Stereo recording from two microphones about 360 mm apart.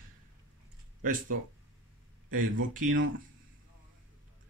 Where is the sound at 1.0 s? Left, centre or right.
Right.